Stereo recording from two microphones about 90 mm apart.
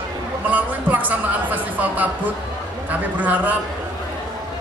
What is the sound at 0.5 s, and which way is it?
A man's voice, 20° right (ahead or behind).